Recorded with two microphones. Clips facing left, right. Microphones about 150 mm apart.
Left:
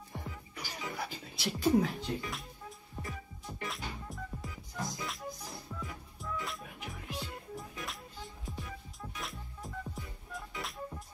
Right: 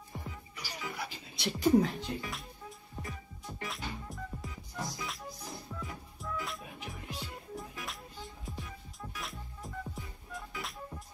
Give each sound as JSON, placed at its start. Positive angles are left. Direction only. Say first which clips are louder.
{"t": 0.6, "sound": "music", "louder": "left 1 dB", "side_deg": 45}
{"t": 1.3, "sound": "speech", "louder": "right 2 dB", "side_deg": 5}
{"t": 3.0, "sound": "music", "louder": "left 1 dB", "side_deg": 5}